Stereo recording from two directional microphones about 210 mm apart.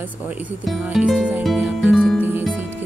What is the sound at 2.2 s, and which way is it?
Music, 10° right (ahead or behind).